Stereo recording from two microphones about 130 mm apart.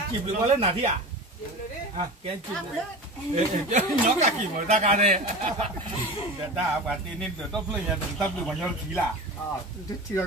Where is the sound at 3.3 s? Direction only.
60° right (ahead or behind).